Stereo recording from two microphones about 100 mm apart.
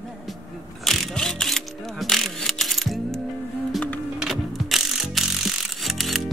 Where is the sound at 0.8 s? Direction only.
5° left (ahead or behind).